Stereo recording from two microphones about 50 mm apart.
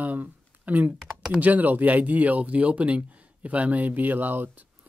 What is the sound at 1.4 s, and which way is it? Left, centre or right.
Speech, right.